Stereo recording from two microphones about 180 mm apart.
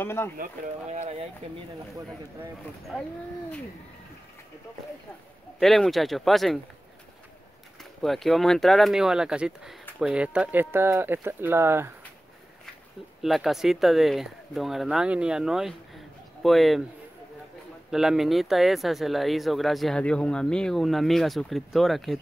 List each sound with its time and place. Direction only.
0.0 s speech: 15° left (ahead or behind)
0.4 s speech: 40° right (ahead or behind)
2.9 s speech: centre (ahead or behind)
5.6 s speech: centre (ahead or behind)
8.0 s speech: centre (ahead or behind)
13.2 s speech: centre (ahead or behind)
17.9 s speech: centre (ahead or behind)